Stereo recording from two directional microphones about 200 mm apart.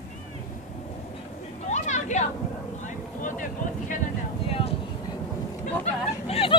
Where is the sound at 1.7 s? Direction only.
35° left (ahead or behind).